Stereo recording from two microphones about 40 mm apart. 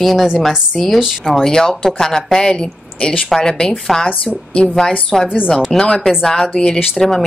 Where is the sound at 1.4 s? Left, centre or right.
Centre.